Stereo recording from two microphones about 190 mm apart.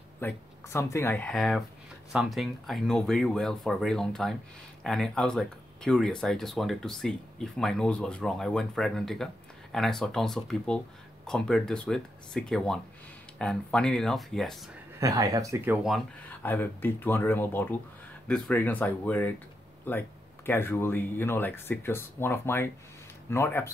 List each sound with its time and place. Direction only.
0.2 s speech: 10° left (ahead or behind)
15.0 s speech: 20° right (ahead or behind)
16.3 s speech: 10° left (ahead or behind)